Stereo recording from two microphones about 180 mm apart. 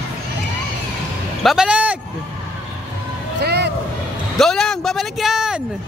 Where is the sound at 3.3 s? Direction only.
70° right (ahead or behind).